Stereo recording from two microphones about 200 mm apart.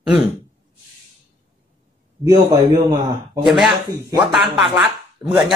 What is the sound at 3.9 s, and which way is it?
Speech, 20° right (ahead or behind).